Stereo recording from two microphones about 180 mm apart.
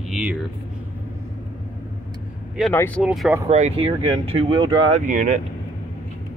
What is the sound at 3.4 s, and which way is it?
Speech, 35° right (ahead or behind).